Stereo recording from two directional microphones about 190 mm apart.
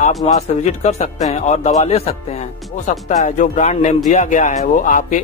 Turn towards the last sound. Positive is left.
turn(degrees=40)  # may be behind; listen again after turning